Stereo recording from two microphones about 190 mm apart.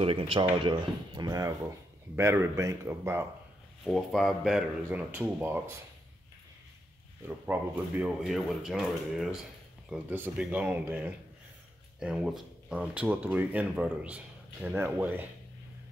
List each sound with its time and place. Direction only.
0.0 s speech: 30° right (ahead or behind); by 3.3 s 15° right (ahead or behind)
3.8 s speech: centre (ahead or behind)
7.2 s speech: 10° right (ahead or behind)